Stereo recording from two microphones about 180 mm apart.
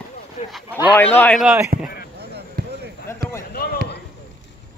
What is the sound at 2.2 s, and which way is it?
Basketball bounce, 65° right (ahead or behind).